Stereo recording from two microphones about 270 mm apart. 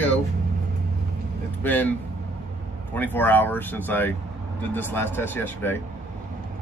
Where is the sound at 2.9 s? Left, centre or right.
Centre.